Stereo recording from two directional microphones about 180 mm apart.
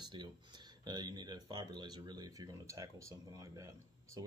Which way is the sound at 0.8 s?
25° right (ahead or behind).